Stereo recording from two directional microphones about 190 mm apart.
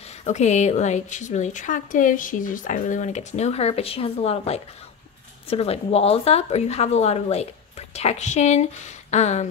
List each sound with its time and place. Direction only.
0.2 s a woman's voice: 35° left (ahead or behind)